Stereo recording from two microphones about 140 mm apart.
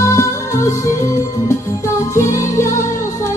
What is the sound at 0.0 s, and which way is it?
Music, 20° left (ahead or behind).